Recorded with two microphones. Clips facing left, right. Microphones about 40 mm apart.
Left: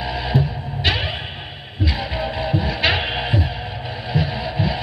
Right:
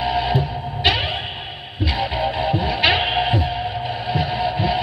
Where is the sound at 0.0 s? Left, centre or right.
Centre.